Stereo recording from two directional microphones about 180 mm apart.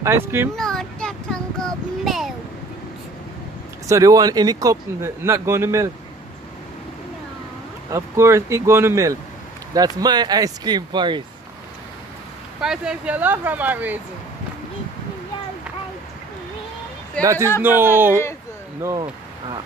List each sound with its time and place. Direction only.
0.0 s speech: 15° right (ahead or behind)
0.6 s child singing: 5° left (ahead or behind)
3.8 s speech: 20° right (ahead or behind)
7.9 s speech: 15° right (ahead or behind)
12.6 s speech: 5° right (ahead or behind)
17.2 s speech: 15° right (ahead or behind)